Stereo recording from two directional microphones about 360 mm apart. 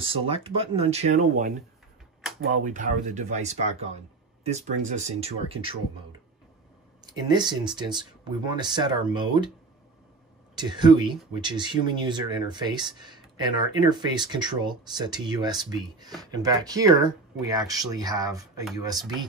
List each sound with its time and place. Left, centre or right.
0.0 s speech: centre
2.5 s speech: right
7.1 s speech: centre
10.5 s speech: centre